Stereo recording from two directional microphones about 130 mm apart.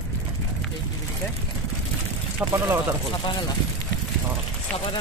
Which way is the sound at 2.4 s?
15° right (ahead or behind).